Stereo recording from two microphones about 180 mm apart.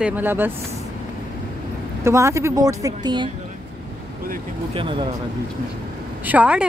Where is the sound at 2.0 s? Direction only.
15° right (ahead or behind).